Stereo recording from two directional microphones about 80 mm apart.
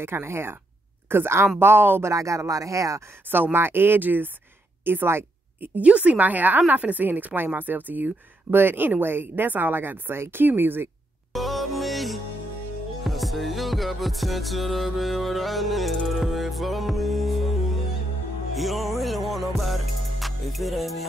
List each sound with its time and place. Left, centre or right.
0.0 s speech: right
3.5 s a woman's voice: right
5.8 s a woman's voice: centre
11.3 s music: centre
18.6 s music: centre